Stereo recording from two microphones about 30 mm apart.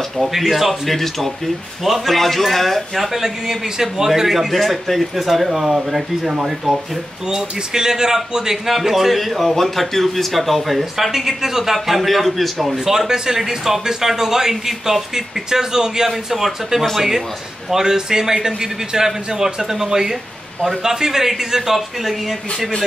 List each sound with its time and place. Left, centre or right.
0.3 s a man's voice: centre
3.1 s a man's voice: centre
6.3 s a man's voice: centre
8.6 s a man's voice: centre
12.8 s a man's voice: centre